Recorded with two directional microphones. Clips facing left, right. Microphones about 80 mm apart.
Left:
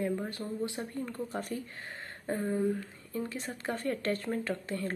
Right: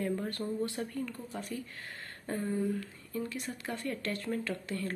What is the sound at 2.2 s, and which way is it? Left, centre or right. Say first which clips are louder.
Speech: left 3 dB; left.